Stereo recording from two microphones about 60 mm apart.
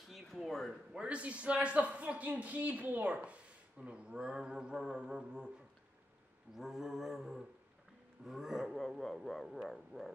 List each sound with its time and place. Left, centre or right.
0.1 s a sound: centre
0.9 s a man's voice: centre
6.5 s roaring cats: centre
8.3 s speech: centre
9.0 s roaring cats: centre